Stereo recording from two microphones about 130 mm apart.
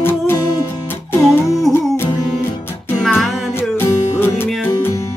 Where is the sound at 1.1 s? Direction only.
25° left (ahead or behind).